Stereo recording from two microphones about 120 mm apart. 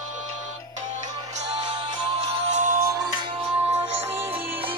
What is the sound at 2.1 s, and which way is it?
Music, 70° right (ahead or behind).